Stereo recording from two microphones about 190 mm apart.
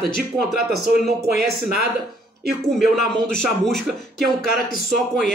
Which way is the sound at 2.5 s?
Centre (ahead or behind).